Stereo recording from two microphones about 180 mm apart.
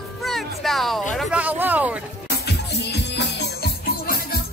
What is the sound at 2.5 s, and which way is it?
Music, 70° left (ahead or behind).